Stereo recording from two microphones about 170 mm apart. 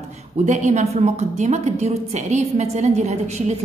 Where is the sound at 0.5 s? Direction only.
45° right (ahead or behind).